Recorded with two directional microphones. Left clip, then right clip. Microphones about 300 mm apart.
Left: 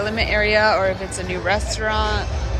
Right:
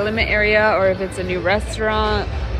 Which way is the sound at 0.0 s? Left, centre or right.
Centre.